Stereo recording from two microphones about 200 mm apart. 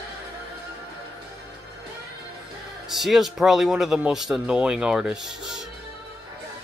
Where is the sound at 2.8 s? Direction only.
Centre (ahead or behind).